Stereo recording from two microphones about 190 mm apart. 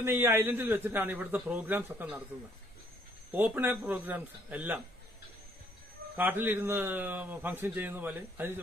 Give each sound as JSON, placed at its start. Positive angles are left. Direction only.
{"t": 0.0, "sound": "a man's voice", "side_deg": -10}
{"t": 3.3, "sound": "a man's voice", "side_deg": -10}
{"t": 6.1, "sound": "a man's voice", "side_deg": -10}